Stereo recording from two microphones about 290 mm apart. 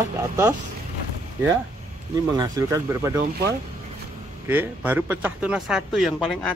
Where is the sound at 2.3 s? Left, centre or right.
Centre.